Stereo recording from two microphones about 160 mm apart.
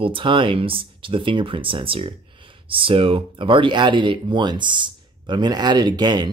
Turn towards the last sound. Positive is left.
turn(degrees=-25)  # may be behind; listen again after turning